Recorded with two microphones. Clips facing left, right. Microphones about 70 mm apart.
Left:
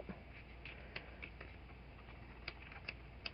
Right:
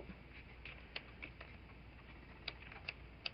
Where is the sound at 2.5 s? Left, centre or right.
Centre.